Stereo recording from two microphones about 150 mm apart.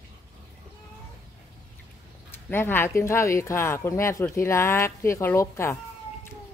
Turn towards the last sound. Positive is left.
turn(degrees=20)  # may be behind; listen again after turning